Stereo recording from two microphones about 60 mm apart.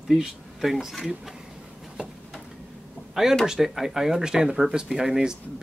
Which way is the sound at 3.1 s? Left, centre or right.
Centre.